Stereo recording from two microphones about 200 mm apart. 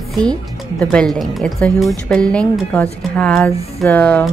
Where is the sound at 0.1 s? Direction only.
5° left (ahead or behind).